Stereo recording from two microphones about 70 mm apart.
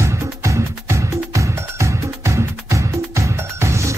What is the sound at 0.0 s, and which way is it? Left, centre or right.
Music, right.